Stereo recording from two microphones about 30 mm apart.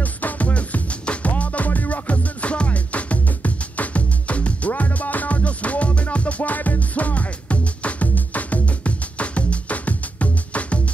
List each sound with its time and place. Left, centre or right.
0.0 s music: left
1.0 s music: left
1.3 s music: left
6.4 s music: left